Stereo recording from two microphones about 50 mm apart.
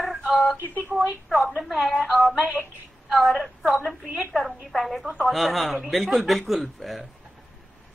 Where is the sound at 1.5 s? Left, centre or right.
Centre.